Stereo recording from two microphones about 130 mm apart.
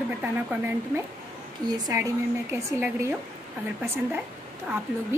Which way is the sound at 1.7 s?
30° right (ahead or behind).